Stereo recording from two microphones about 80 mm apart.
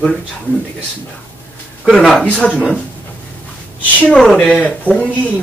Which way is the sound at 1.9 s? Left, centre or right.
Centre.